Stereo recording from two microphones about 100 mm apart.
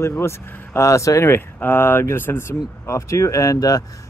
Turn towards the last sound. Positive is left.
turn(degrees=35)  # may be behind; listen again after turning